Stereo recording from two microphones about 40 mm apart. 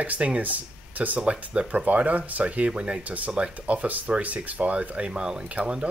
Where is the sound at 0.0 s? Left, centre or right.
Right.